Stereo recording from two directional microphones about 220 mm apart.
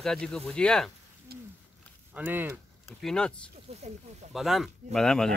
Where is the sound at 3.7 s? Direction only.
25° right (ahead or behind).